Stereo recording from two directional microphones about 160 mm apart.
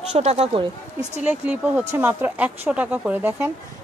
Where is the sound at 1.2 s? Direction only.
10° right (ahead or behind).